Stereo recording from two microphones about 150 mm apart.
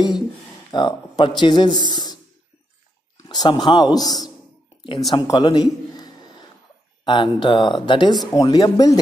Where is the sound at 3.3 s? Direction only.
25° left (ahead or behind).